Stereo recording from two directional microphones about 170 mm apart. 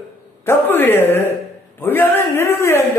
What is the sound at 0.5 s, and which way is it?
A man's voice, 10° left (ahead or behind).